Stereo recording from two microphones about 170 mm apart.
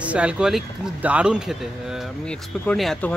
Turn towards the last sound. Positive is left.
turn(degrees=5)  # may be behind; listen again after turning